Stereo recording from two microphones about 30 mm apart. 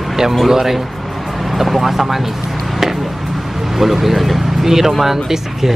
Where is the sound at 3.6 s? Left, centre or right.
Centre.